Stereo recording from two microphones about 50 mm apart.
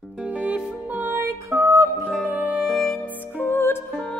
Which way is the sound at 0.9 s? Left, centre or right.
Right.